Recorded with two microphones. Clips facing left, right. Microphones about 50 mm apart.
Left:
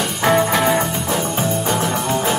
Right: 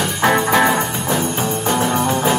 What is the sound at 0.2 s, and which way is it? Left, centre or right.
Music, right.